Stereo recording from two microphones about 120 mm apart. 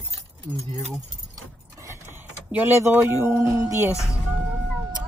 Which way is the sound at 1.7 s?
25° right (ahead or behind).